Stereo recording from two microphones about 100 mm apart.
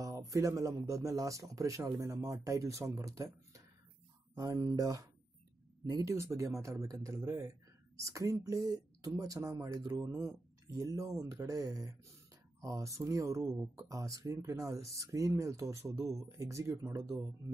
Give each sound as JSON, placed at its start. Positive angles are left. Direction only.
{"t": 0.0, "sound": "speech", "side_deg": -35}
{"t": 9.9, "sound": "speech", "side_deg": -20}
{"t": 10.8, "sound": "speech", "side_deg": -35}